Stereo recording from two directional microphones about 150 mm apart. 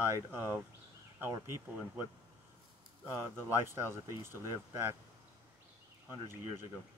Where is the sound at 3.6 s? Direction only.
20° right (ahead or behind).